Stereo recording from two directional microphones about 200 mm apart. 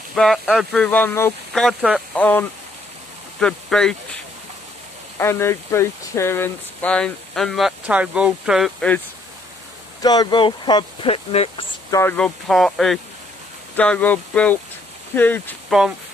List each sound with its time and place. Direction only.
0.1 s speech: centre (ahead or behind)
5.2 s speech: 10° left (ahead or behind)
10.0 s speech: 20° left (ahead or behind)
11.9 s speech: 10° left (ahead or behind)